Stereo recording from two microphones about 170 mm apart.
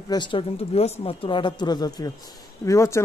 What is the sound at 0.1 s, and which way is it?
Speech, 30° left (ahead or behind).